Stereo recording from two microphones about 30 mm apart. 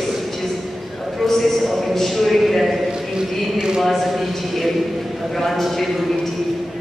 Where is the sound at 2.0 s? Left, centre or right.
Centre.